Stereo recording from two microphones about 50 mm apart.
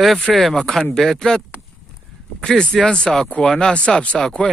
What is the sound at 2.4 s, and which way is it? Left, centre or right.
Speech, centre.